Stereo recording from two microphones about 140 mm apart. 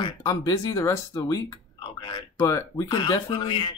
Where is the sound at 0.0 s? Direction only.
25° left (ahead or behind).